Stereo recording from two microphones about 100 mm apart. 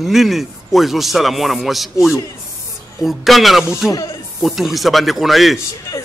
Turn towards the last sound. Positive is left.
turn(degrees=0)  # may be behind; listen again after turning